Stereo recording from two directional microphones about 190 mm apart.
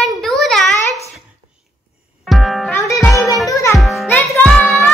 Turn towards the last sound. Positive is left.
turn(degrees=0)  # may be behind; listen again after turning